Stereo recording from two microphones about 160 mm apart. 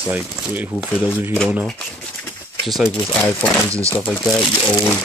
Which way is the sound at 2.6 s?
Centre (ahead or behind).